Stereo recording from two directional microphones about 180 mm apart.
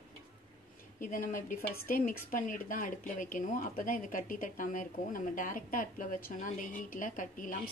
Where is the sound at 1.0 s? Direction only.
50° left (ahead or behind).